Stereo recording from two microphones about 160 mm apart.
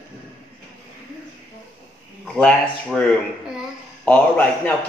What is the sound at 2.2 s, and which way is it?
A man's voice, 5° left (ahead or behind).